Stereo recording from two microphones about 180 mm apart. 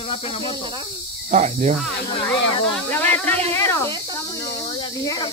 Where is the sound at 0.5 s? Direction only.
25° right (ahead or behind).